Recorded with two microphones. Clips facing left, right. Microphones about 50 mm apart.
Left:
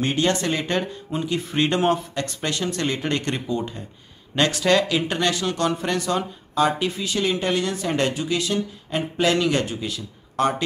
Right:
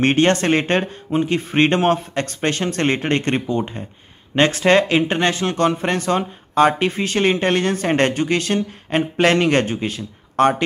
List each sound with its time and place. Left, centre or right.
0.0 s speech: right